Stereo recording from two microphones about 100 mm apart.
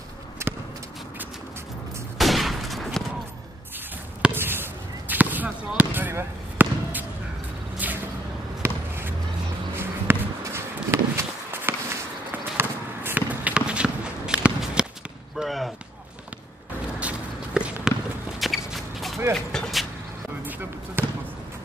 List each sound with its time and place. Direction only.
0.4 s a sound: 25° right (ahead or behind)
2.1 s fusillade: centre (ahead or behind)
4.2 s basketball bounce: 20° right (ahead or behind)
7.8 s a sound: 15° right (ahead or behind)
8.6 s basketball bounce: 25° right (ahead or behind)
9.8 s walk: 25° right (ahead or behind)
15.3 s basketball bounce: centre (ahead or behind)
17.6 s walk: 10° right (ahead or behind)
18.4 s walk: centre (ahead or behind)
19.5 s vehicle: 5° left (ahead or behind)
20.4 s basketball bounce: 15° right (ahead or behind)